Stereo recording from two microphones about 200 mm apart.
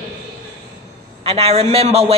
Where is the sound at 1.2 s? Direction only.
30° right (ahead or behind).